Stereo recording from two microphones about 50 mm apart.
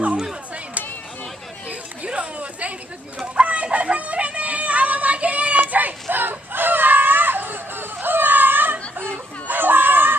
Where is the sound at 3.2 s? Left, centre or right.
Right.